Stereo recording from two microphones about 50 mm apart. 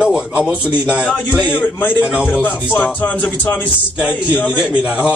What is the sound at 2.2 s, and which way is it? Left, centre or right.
Speech, left.